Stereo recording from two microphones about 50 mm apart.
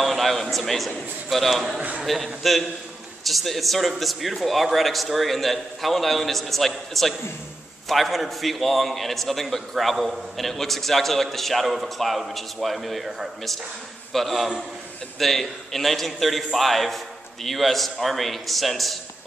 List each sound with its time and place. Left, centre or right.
0.0 s a man's voice: centre
1.8 s a man's voice: right
2.0 s a man's voice: centre